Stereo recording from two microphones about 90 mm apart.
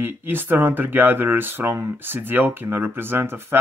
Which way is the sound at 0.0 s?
25° right (ahead or behind).